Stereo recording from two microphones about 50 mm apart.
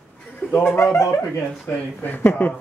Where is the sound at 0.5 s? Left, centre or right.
Left.